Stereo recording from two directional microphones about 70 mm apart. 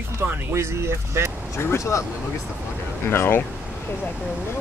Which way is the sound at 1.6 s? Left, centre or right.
Left.